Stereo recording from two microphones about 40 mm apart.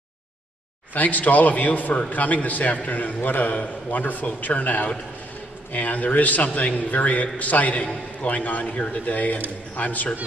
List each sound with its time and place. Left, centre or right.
0.9 s a man's voice: left
3.3 s a man's voice: left